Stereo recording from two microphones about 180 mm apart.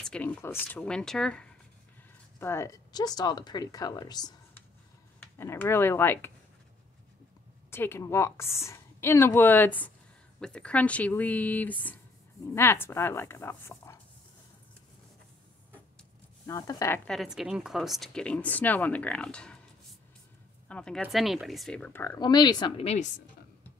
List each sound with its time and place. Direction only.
0.0 s speech: 5° left (ahead or behind)
2.3 s speech: 15° left (ahead or behind)
5.4 s speech: 15° left (ahead or behind)
7.7 s speech: 15° left (ahead or behind)
16.4 s speech: 20° left (ahead or behind)
17.1 s speech: centre (ahead or behind)
20.6 s speech: 5° left (ahead or behind); by 22.8 s 25° left (ahead or behind)
22.8 s a woman's voice: 40° left (ahead or behind)